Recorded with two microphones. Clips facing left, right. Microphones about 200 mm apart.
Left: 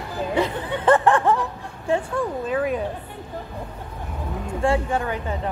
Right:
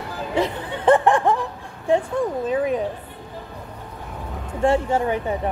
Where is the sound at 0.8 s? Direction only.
15° right (ahead or behind).